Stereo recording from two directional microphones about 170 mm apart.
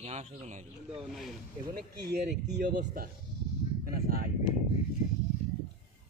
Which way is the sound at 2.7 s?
55° right (ahead or behind).